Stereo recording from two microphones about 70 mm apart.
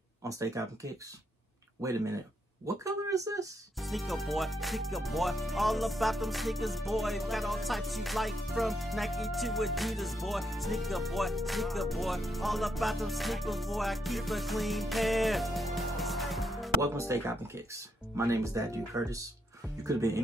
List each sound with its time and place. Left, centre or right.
0.2 s speech: right
3.8 s music: centre
16.8 s speech: right